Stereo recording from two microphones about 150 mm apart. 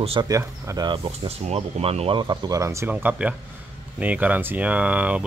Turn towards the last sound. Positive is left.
turn(degrees=-10)  # may be behind; listen again after turning